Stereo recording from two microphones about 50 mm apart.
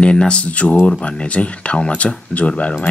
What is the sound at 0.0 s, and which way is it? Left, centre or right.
Speech, centre.